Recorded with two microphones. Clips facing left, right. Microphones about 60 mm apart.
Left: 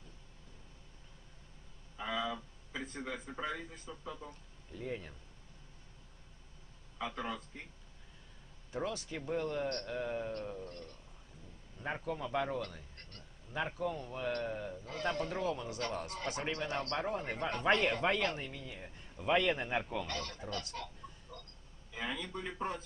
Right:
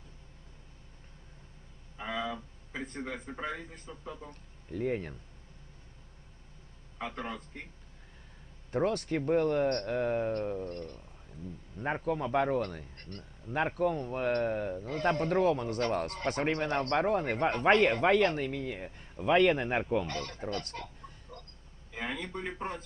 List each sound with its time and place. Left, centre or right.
2.0 s a sound: right
3.3 s a man's voice: right
4.3 s speech: right
7.0 s speech: right
8.7 s a man's voice: right
19.8 s speech: right
21.9 s a man's voice: right